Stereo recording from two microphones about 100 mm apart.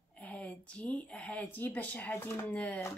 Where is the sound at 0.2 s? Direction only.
15° left (ahead or behind).